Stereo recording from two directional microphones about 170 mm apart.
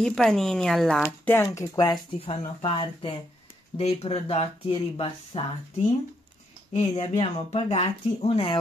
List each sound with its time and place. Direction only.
0.0 s speech: 5° left (ahead or behind)
1.0 s speech: 10° left (ahead or behind)
2.1 s speech: 35° left (ahead or behind)
6.8 s speech: 35° left (ahead or behind)